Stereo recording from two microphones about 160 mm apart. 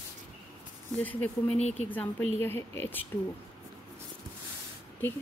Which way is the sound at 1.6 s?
40° left (ahead or behind).